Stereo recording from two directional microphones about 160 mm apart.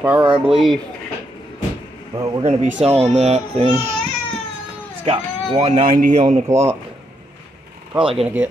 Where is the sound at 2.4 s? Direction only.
40° right (ahead or behind).